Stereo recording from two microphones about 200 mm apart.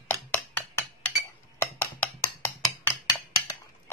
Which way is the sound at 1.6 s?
10° left (ahead or behind).